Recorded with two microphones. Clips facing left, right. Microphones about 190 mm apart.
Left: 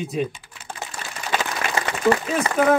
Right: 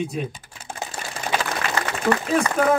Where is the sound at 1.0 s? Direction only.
50° right (ahead or behind).